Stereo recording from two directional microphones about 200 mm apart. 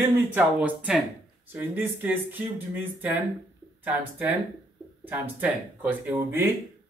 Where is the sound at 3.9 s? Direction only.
10° right (ahead or behind).